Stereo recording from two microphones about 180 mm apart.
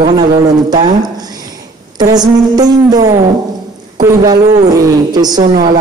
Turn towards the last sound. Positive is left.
turn(degrees=-25)  # may be behind; listen again after turning